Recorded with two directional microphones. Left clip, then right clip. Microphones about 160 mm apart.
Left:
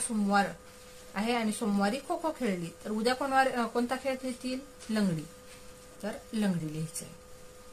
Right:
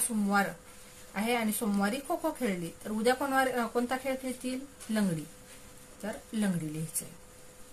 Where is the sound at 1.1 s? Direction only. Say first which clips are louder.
Even; 5° left (ahead or behind).